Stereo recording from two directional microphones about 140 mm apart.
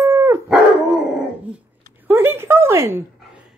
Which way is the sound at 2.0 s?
15° right (ahead or behind).